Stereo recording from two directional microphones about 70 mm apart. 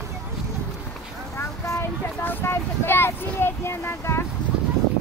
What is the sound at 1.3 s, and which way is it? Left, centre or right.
Speech, left.